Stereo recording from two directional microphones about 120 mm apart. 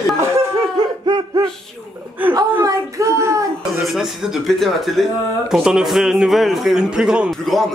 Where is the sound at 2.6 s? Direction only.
25° right (ahead or behind).